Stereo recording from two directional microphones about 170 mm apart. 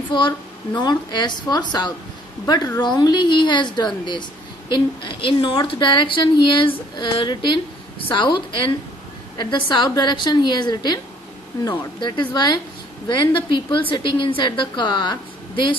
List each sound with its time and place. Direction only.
0.1 s a woman's voice: 25° left (ahead or behind)